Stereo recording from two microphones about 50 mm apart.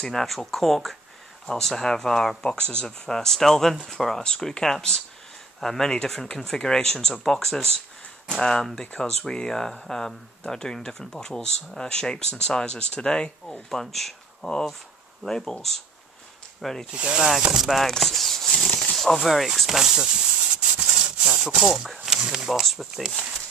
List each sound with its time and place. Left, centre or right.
0.0 s speech: centre
2.5 s speech: left
3.1 s speech: centre
13.7 s speech: centre
16.9 s speech: right
17.6 s a sound: centre
18.7 s a sound: centre
18.9 s speech: centre
20.3 s rub: right
22.0 s speech: centre